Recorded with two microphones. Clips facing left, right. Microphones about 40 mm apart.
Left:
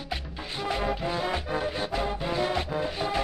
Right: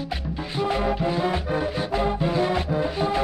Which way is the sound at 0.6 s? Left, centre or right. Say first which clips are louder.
Right 5 dB; centre.